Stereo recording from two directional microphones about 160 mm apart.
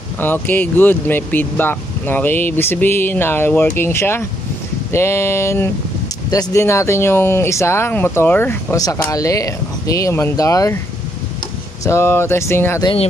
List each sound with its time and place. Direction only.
0.2 s speech: 10° left (ahead or behind)
11.8 s speech: 15° left (ahead or behind)